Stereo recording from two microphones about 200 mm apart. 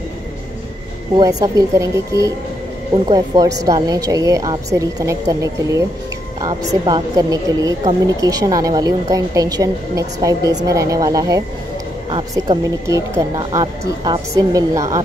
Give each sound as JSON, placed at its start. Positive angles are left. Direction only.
{"t": 1.1, "sound": "a woman's voice", "side_deg": -20}